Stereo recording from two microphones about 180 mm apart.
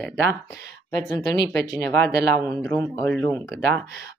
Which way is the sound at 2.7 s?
10° left (ahead or behind).